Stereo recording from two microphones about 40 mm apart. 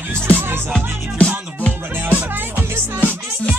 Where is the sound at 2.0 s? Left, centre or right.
Right.